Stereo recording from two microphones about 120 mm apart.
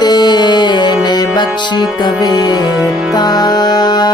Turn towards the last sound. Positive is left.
turn(degrees=35)  # may be behind; listen again after turning